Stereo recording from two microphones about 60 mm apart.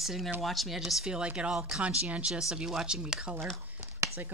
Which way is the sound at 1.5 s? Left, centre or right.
Centre.